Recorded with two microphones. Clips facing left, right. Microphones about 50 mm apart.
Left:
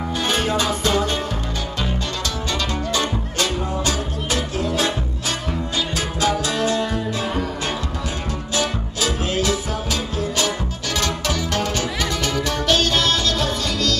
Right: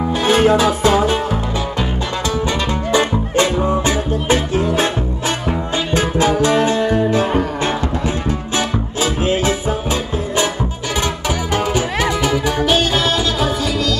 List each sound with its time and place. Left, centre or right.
0.1 s music: centre
2.9 s music: right
5.9 s music: right
11.2 s music: centre